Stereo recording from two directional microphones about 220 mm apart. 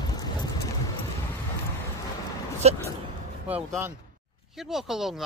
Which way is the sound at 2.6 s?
30° right (ahead or behind).